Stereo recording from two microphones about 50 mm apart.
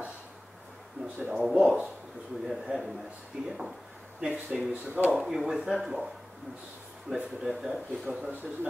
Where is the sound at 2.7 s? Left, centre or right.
Centre.